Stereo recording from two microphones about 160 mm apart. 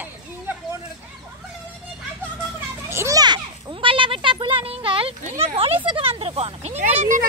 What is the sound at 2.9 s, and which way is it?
Children playing, 20° right (ahead or behind).